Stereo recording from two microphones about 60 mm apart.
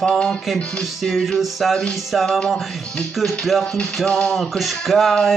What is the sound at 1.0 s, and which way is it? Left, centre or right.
Speech, centre.